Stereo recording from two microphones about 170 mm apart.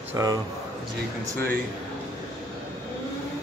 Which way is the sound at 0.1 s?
20° right (ahead or behind).